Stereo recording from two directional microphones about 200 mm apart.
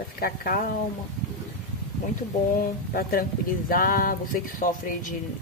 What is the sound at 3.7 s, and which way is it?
Speech, 45° left (ahead or behind).